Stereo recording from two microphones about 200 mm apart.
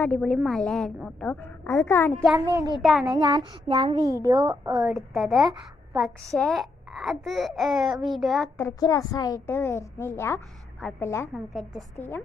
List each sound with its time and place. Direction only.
0.0 s a child's voice: 5° left (ahead or behind)
2.4 s child singing: 20° right (ahead or behind)
2.8 s a child's voice: centre (ahead or behind)
3.2 s child singing: 20° right (ahead or behind)
4.2 s a child's voice: 15° right (ahead or behind)
4.8 s a child's voice: centre (ahead or behind)
8.5 s a woman's voice: 15° left (ahead or behind)
11.3 s a child's voice: centre (ahead or behind)